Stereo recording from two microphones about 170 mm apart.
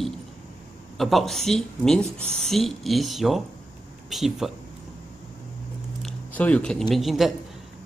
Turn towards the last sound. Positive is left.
turn(degrees=0)  # may be behind; listen again after turning